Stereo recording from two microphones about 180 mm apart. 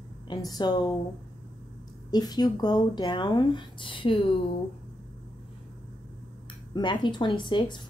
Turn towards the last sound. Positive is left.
turn(degrees=25)  # may be behind; listen again after turning